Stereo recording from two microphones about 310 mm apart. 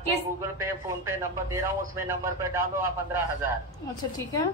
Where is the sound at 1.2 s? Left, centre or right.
Centre.